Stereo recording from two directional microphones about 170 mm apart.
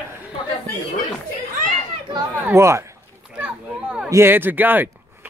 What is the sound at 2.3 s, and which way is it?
Speech, 15° right (ahead or behind).